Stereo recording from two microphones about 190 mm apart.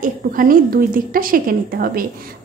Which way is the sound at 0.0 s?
45° right (ahead or behind).